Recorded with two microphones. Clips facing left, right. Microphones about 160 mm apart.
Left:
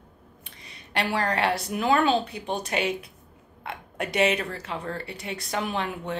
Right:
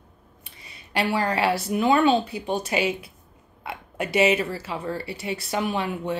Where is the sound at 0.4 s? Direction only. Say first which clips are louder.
Right 1 dB; 5° right (ahead or behind).